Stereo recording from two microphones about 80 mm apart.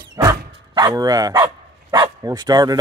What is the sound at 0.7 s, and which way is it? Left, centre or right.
Dog, right.